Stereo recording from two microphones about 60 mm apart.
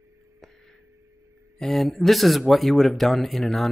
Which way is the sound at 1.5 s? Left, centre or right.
Centre.